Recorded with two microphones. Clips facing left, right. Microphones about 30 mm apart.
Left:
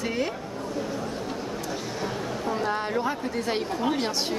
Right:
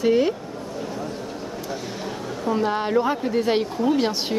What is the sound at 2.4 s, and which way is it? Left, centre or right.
A woman's voice, centre.